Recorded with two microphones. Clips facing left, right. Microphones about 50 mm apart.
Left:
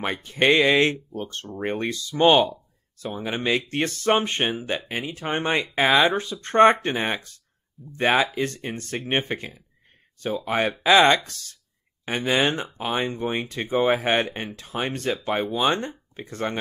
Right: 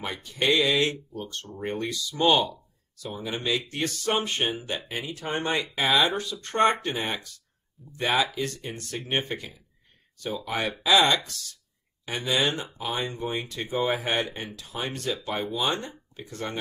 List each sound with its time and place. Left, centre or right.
0.0 s speech: left